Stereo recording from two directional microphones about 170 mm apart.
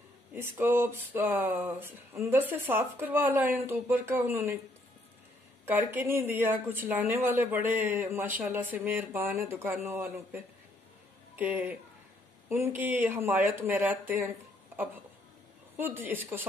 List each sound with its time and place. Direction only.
0.3 s speech: 10° right (ahead or behind)
5.7 s speech: 10° right (ahead or behind)
15.7 s speech: 15° right (ahead or behind)